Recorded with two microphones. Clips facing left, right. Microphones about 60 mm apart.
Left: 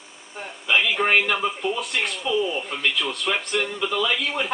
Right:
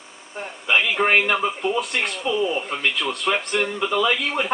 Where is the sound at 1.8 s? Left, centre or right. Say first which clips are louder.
Right 2 dB; centre.